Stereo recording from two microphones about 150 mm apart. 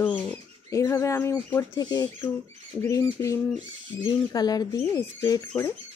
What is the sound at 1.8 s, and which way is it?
Speech, 25° left (ahead or behind).